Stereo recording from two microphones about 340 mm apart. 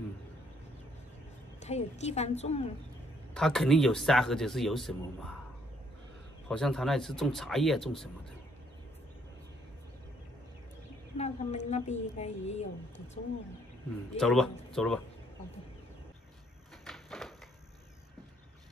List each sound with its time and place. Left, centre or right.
1.6 s a woman's voice: centre
3.3 s speech: centre
6.5 s speech: centre
11.1 s a woman's voice: centre
14.1 s speech: centre
16.8 s a sound: centre